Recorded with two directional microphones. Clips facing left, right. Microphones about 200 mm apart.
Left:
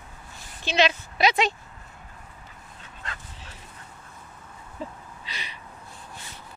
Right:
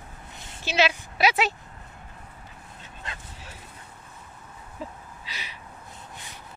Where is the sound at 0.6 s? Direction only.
5° right (ahead or behind).